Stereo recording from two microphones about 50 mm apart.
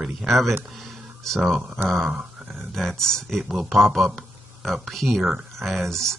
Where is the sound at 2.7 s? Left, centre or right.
Centre.